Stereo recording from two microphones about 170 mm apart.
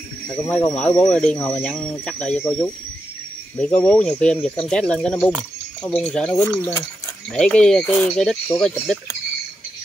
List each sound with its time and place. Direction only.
0.3 s speech: 5° left (ahead or behind)